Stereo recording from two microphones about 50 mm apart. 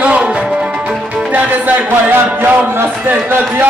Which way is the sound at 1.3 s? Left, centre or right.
Right.